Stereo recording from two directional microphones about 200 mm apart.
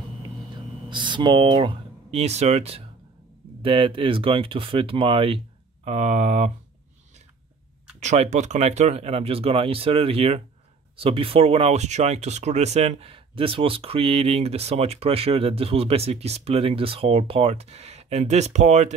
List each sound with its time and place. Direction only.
0.8 s speech: 25° right (ahead or behind)
8.0 s speech: 35° right (ahead or behind)